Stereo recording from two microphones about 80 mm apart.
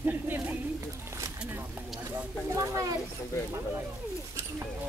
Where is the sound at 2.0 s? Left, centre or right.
Right.